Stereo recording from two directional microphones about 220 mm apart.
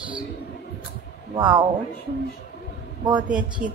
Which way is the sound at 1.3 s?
20° right (ahead or behind).